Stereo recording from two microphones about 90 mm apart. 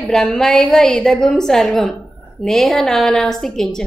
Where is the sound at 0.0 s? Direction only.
5° left (ahead or behind).